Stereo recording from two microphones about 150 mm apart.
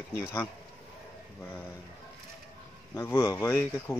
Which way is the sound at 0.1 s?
15° left (ahead or behind).